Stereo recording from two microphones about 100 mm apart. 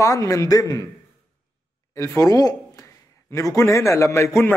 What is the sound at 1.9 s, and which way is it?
A man's voice, 35° left (ahead or behind).